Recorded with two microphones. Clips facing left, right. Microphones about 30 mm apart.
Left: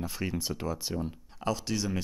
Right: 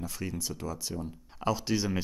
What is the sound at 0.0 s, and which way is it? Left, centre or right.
Speech, left.